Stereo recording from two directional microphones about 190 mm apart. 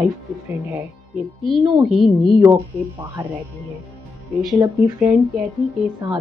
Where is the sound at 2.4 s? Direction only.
15° right (ahead or behind).